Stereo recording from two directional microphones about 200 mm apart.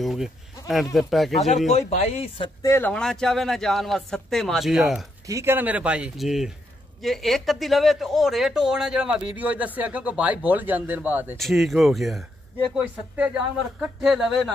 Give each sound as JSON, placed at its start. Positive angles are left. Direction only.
{"t": 0.0, "sound": "speech", "side_deg": 0}
{"t": 1.7, "sound": "speech", "side_deg": 35}
{"t": 2.6, "sound": "speech", "side_deg": 10}
{"t": 5.2, "sound": "speech", "side_deg": -15}